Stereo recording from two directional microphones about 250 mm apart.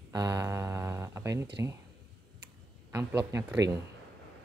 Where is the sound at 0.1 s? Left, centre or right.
Centre.